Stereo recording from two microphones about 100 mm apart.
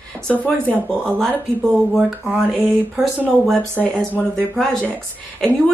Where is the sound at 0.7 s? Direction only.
10° left (ahead or behind).